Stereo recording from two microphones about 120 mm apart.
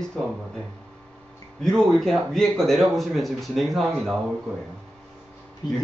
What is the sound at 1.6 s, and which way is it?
A man's voice, 5° left (ahead or behind).